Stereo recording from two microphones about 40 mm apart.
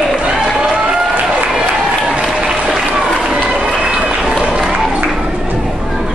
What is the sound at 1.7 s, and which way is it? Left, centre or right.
Applause, centre.